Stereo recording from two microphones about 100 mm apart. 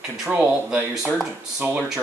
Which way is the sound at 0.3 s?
10° right (ahead or behind).